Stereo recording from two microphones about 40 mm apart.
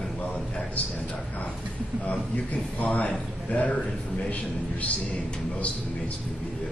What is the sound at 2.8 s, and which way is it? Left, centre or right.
Speech, left.